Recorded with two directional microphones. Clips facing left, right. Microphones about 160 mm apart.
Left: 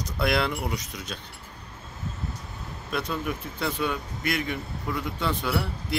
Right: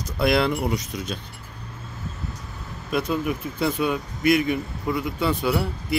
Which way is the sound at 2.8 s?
10° right (ahead or behind).